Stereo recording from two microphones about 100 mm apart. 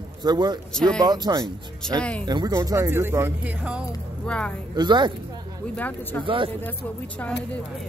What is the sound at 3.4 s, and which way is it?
Speech, 10° right (ahead or behind).